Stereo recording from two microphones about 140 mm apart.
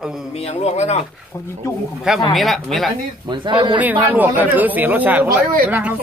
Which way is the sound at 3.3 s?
35° right (ahead or behind).